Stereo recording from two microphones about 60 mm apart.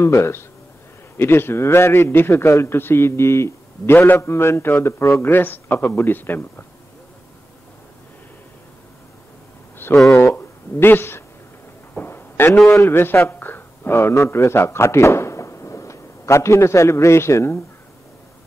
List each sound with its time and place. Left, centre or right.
0.0 s a man's voice: left
5.3 s a man's voice: left
9.8 s a sound: left
12.6 s a man's voice: left
13.3 s a sound: left
14.1 s speech: left